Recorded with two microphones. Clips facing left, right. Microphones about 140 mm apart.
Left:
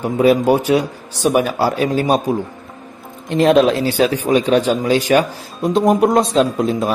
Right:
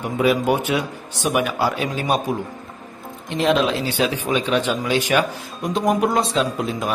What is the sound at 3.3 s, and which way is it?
Speech, 45° left (ahead or behind).